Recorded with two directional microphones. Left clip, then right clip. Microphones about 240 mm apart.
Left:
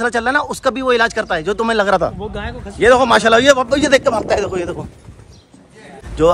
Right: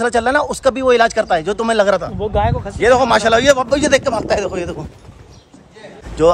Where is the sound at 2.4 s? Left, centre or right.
Right.